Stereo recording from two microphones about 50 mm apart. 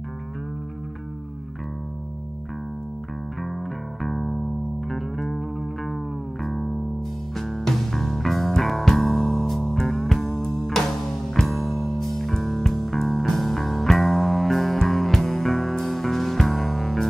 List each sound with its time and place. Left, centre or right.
3.4 s music: centre